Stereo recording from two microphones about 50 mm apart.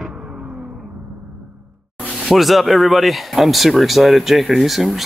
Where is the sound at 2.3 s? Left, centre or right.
Centre.